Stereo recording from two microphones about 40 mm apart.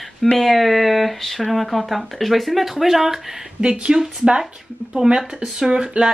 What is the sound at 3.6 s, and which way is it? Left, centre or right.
Speech, right.